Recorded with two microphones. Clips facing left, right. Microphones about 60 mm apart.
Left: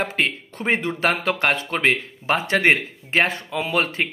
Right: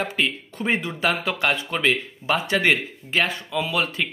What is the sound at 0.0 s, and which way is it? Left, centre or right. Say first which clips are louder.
Speech: left 1 dB; left.